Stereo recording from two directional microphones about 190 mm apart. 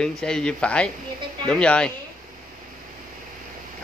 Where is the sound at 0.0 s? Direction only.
5° left (ahead or behind).